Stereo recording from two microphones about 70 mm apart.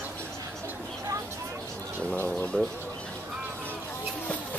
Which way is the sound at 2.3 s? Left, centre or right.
Centre.